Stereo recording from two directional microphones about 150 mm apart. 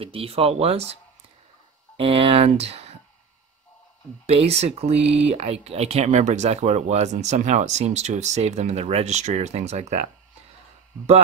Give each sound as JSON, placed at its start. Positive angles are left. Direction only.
{"t": 0.0, "sound": "speech", "side_deg": -40}
{"t": 2.0, "sound": "speech", "side_deg": -40}
{"t": 4.3, "sound": "speech", "side_deg": -45}
{"t": 5.0, "sound": "speech", "side_deg": -10}
{"t": 5.3, "sound": "speech", "side_deg": -45}